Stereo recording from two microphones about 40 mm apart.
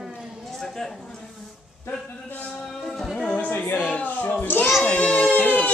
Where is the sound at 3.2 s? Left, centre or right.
Left.